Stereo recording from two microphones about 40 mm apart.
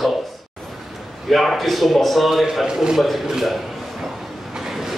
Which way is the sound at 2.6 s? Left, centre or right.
Centre.